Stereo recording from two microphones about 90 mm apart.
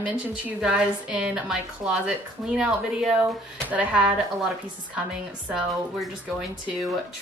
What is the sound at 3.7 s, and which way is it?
Speech, 15° right (ahead or behind).